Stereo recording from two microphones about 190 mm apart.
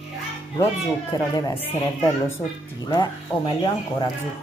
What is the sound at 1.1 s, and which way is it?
Speech, 20° left (ahead or behind).